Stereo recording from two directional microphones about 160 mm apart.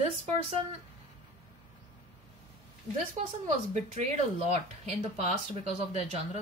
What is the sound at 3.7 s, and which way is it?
Speech, 45° right (ahead or behind).